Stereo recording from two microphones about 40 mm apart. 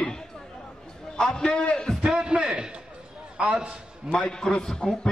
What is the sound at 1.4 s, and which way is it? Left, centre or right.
Speech, left.